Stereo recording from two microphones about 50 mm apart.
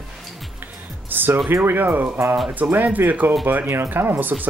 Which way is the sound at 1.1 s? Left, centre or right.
Right.